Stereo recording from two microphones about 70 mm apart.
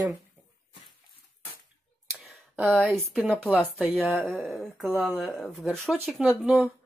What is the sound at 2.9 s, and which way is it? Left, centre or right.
Speech, centre.